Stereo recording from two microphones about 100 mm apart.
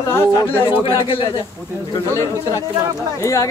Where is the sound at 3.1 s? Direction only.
35° left (ahead or behind).